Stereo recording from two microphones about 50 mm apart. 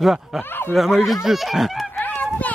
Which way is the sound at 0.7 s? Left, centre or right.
Centre.